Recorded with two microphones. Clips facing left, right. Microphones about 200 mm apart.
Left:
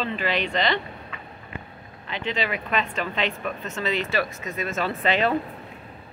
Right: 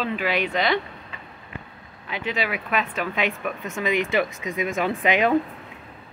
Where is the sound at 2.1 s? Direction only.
10° right (ahead or behind).